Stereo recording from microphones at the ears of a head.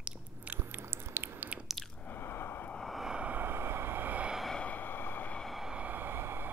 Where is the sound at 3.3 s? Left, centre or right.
Right.